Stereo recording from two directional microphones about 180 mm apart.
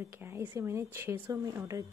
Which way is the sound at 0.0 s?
15° right (ahead or behind).